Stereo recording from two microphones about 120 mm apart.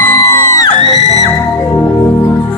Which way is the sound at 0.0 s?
20° left (ahead or behind).